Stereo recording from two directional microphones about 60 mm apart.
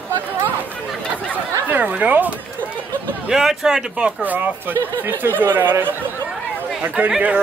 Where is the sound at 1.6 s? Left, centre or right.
Right.